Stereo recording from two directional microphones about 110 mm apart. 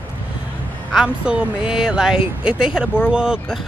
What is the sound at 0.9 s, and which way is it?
Speech, 5° right (ahead or behind).